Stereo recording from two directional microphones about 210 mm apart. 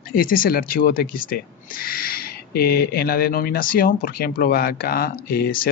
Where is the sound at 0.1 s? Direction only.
45° left (ahead or behind).